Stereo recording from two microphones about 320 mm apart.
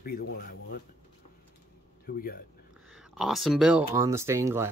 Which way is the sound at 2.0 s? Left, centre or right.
Left.